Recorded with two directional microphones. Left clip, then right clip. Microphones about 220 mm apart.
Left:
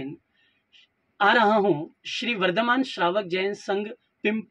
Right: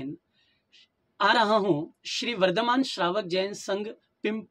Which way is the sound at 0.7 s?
15° right (ahead or behind).